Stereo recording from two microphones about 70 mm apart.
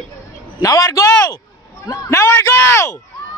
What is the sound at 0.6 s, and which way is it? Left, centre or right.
A man's voice, left.